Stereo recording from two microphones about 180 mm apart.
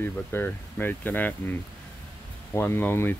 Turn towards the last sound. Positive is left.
turn(degrees=10)  # may be behind; listen again after turning